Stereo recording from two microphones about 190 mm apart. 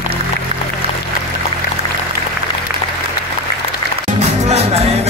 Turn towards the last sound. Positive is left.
turn(degrees=-35)  # may be behind; listen again after turning